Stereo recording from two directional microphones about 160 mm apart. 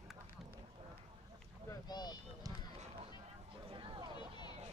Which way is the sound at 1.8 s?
25° left (ahead or behind).